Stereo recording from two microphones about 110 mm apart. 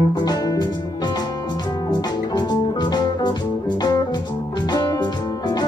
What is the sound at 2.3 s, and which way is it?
Music, 40° left (ahead or behind).